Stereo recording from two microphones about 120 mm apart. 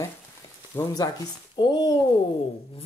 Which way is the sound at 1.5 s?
35° left (ahead or behind).